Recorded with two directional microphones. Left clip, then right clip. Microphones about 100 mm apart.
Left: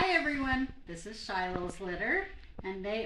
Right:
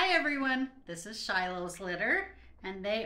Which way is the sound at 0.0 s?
30° right (ahead or behind).